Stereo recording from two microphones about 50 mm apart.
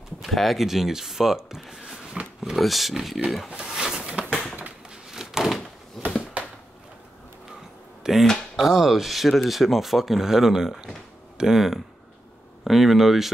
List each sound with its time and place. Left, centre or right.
0.3 s speech: centre
1.7 s a sound: centre
2.2 s speech: centre
2.5 s speech: centre
3.4 s speech: centre
3.7 s a sound: centre
5.1 s door: centre
8.0 s a sound: centre
8.5 s speech: centre